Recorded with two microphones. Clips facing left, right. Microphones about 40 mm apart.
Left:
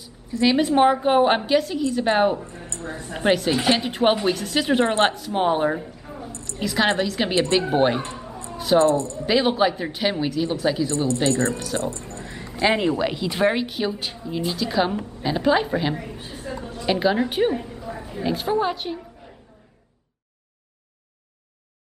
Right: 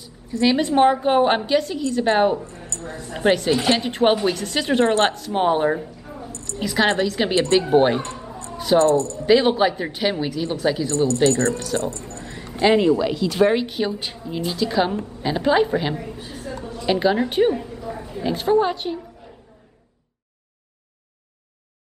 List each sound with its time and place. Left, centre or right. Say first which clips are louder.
0.0 s a woman's voice: right 1 dB; centre
2.4 s speech: even; left
3.1 s a woman's voice: right 2 dB; centre
6.2 s a sound: right 2 dB; left
6.6 s a woman's voice: right 2 dB; centre
8.0 s a sound: right 1 dB; left
8.7 s speech: right 1 dB; centre
9.2 s a woman's voice: right 3 dB; centre
11.8 s speech: right 1 dB; left
13.5 s a woman's voice: right 2 dB; centre
16.2 s a sound: right 1 dB; centre
16.8 s a woman's voice: right 1 dB; centre